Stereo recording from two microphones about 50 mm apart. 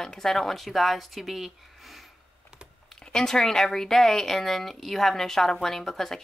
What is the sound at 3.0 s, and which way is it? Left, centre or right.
Speech, centre.